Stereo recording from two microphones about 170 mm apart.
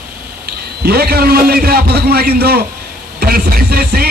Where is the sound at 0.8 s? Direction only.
65° right (ahead or behind).